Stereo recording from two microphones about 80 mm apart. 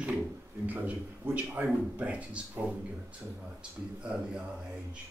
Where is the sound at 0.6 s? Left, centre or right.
Centre.